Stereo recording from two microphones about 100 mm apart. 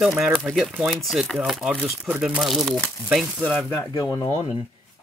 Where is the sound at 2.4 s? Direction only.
Centre (ahead or behind).